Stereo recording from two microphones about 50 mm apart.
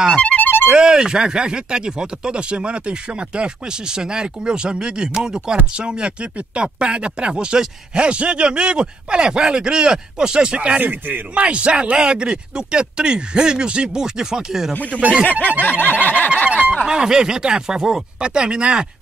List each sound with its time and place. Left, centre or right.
0.1 s music: left
0.7 s speech: centre
10.8 s speech: right
11.3 s speech: right
14.7 s speech: left
15.8 s a sound: left
16.4 s speech: right